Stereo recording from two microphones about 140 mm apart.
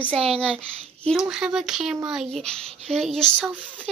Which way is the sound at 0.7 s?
5° left (ahead or behind).